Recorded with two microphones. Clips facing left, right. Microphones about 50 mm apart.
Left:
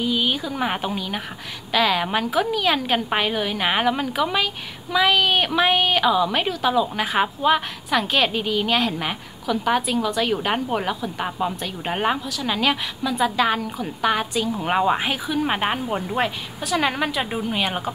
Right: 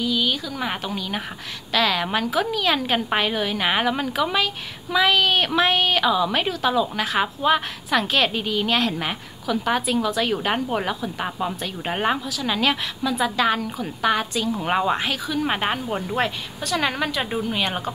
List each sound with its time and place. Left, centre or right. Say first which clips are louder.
0.0 s a woman's voice: left 1 dB; left; by 17.9 s centre